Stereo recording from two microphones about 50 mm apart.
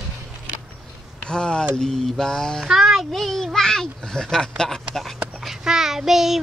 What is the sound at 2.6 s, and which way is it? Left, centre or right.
A child's voice, centre.